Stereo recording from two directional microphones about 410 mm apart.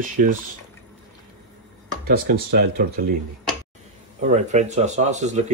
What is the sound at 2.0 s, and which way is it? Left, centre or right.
Speech, right.